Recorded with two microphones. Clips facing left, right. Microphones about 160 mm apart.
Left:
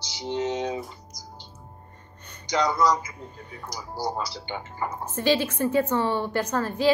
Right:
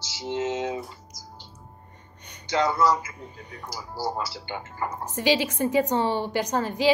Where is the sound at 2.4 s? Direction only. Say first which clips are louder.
Even; 15° left (ahead or behind).